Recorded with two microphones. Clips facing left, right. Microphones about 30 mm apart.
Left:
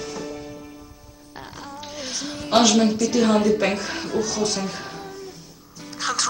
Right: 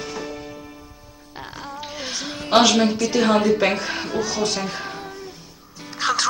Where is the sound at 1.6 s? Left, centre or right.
Centre.